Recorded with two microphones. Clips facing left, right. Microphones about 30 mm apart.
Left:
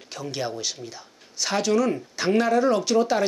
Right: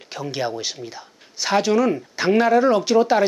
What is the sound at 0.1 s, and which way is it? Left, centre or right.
Speech, centre.